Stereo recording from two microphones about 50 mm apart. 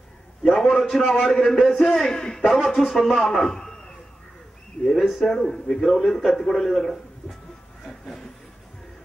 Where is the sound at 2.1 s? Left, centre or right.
Centre.